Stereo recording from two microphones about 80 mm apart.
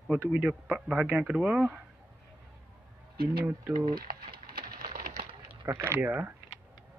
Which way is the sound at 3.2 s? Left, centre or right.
Right.